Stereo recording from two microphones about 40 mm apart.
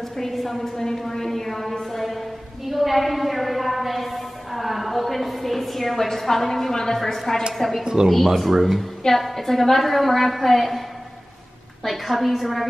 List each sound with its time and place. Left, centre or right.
0.1 s a woman's voice: centre
2.7 s a sound: centre
7.1 s a woman's voice: centre
7.8 s speech: centre
8.4 s a woman's voice: centre
9.2 s a woman's voice: centre
11.8 s a woman's voice: centre